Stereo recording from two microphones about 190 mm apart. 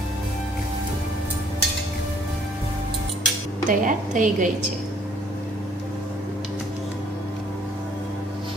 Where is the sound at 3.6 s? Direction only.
40° right (ahead or behind).